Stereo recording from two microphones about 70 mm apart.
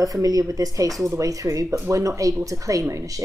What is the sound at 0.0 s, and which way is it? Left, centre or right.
A woman's voice, right.